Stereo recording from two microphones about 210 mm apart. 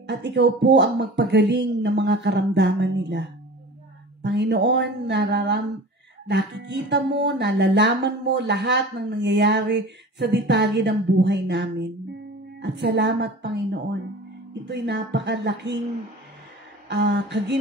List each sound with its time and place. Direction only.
0.0 s speech: 55° right (ahead or behind)
16.9 s speech: 55° right (ahead or behind)